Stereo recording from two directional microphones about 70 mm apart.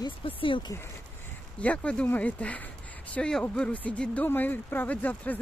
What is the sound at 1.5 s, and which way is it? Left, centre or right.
Speech, centre.